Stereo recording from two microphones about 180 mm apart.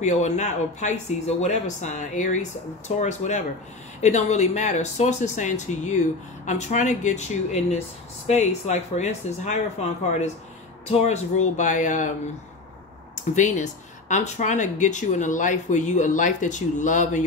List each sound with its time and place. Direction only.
0.0 s speech: 40° left (ahead or behind)
13.3 s speech: 40° left (ahead or behind)